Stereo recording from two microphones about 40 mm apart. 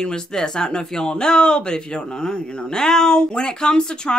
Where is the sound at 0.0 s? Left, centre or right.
Centre.